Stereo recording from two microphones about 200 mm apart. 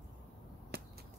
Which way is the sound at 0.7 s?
55° right (ahead or behind).